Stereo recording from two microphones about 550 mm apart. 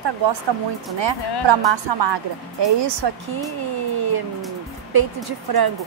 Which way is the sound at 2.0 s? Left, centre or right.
Right.